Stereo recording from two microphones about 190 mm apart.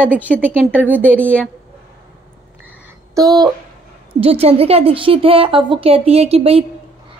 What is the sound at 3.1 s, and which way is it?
Speech, 20° right (ahead or behind).